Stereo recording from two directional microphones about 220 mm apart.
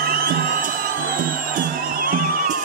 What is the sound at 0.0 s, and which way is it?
Music, 45° right (ahead or behind).